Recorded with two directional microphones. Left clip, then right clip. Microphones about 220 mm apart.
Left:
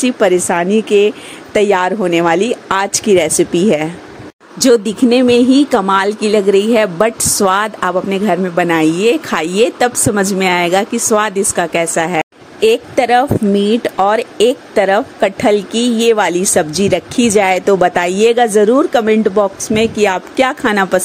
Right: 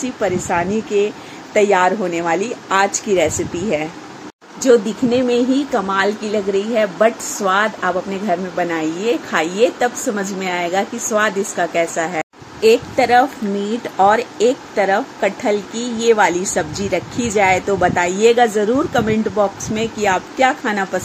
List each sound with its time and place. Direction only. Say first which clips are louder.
0.0 s a woman's voice: left 8 dB; 50° left (ahead or behind)